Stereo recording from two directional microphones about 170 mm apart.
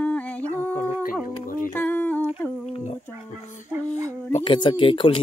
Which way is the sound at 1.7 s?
10° left (ahead or behind).